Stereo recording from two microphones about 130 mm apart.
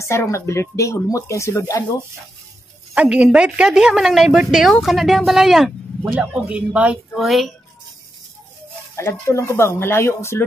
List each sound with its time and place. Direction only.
0.0 s speech: 20° left (ahead or behind)
2.9 s a woman's voice: 10° right (ahead or behind)
8.9 s speech: 20° left (ahead or behind)